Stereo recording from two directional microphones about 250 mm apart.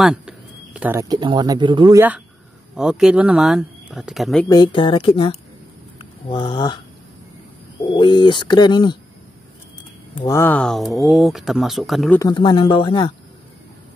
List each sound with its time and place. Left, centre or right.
0.0 s speech: centre
4.5 s speech: centre
7.8 s speech: centre
10.2 s speech: centre
12.2 s speech: centre